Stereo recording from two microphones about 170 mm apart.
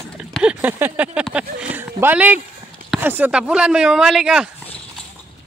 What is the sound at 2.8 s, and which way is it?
Speech, 10° right (ahead or behind).